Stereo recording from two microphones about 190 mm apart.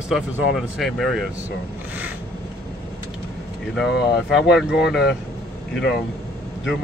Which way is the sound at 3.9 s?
60° left (ahead or behind).